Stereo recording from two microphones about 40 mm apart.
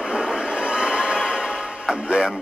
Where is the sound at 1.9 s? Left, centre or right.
Right.